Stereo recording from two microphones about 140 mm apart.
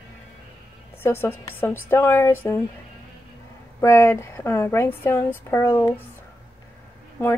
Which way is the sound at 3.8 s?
20° left (ahead or behind).